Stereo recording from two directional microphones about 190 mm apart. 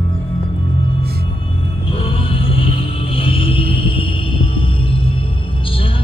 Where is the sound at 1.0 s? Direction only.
55° right (ahead or behind).